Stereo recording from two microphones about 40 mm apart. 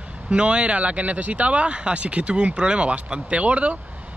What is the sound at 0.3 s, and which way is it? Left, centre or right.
Speech, right.